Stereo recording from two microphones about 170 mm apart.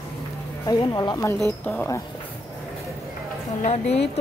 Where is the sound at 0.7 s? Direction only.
25° left (ahead or behind).